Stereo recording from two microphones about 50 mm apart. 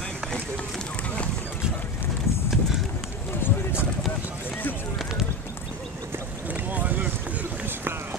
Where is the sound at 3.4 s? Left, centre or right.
Left.